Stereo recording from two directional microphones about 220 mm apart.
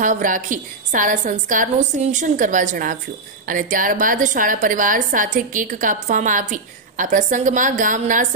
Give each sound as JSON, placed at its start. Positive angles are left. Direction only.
{"t": 0.0, "sound": "a woman's voice", "side_deg": -35}